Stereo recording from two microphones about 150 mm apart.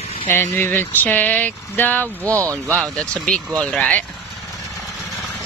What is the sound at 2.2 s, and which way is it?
Speech, 20° right (ahead or behind).